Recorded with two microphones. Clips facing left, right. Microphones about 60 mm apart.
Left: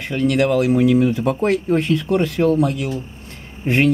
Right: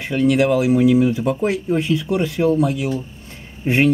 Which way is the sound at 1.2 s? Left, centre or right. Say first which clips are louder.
Left 1 dB; left.